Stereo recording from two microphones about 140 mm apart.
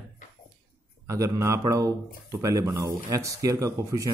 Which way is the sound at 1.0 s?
25° right (ahead or behind).